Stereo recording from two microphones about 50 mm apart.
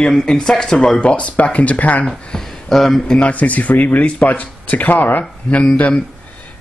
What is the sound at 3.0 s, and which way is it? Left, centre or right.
Speech, centre.